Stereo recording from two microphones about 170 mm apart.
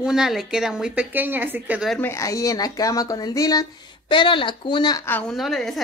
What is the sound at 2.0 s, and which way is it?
Speech, 15° left (ahead or behind).